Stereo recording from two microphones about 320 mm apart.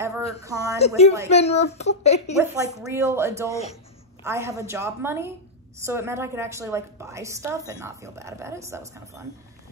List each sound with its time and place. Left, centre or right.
0.4 s a woman's voice: centre
0.7 s speech: centre
2.4 s a woman's voice: centre